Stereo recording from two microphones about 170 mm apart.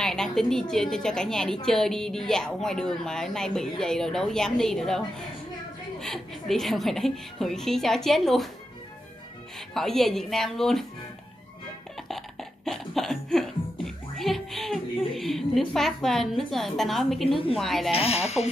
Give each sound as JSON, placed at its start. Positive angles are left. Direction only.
{"t": 0.0, "sound": "a woman's voice", "side_deg": 5}
{"t": 9.8, "sound": "a woman's voice", "side_deg": 0}
{"t": 12.1, "sound": "music", "side_deg": 0}
{"t": 17.6, "sound": "a woman's voice", "side_deg": 0}
{"t": 17.9, "sound": "speech", "side_deg": 35}